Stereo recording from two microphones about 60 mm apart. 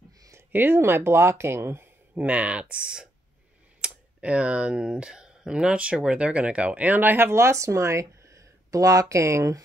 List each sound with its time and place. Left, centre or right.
0.5 s speech: right
2.1 s speech: right